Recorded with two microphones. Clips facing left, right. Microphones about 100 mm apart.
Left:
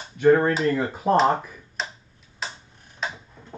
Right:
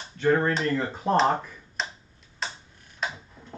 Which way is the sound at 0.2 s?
10° left (ahead or behind).